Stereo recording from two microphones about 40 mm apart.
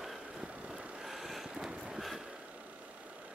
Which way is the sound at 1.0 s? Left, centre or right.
Centre.